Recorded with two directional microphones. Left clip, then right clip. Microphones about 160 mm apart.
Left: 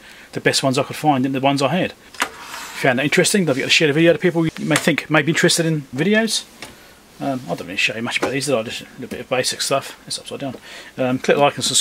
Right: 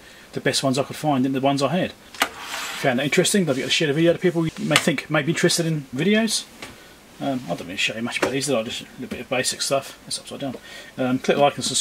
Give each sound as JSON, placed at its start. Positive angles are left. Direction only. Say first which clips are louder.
{"t": 0.3, "sound": "speech", "louder": "left 4 dB", "side_deg": 25}